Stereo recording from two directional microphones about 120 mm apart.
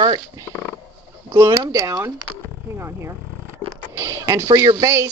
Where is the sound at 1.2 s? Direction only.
25° right (ahead or behind).